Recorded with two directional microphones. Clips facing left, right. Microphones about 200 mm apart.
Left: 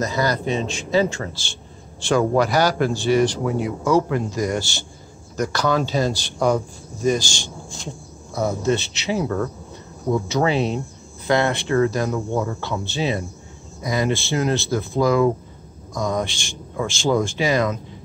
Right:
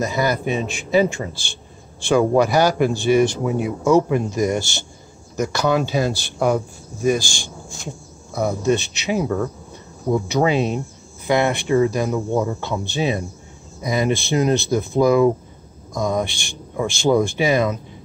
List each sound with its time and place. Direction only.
0.0 s speech: 10° right (ahead or behind)
8.4 s speech: 15° right (ahead or behind)